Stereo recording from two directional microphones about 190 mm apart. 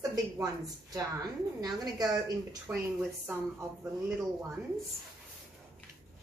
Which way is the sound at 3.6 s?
10° right (ahead or behind).